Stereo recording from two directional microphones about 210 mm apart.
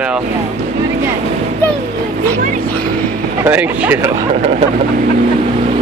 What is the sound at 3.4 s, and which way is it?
Speech, 10° right (ahead or behind).